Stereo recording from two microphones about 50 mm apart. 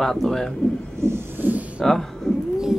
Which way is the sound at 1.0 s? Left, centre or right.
Right.